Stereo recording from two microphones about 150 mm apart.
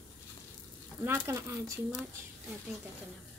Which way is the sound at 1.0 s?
15° right (ahead or behind).